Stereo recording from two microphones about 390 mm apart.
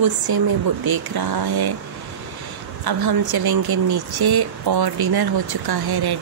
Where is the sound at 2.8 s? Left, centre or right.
Right.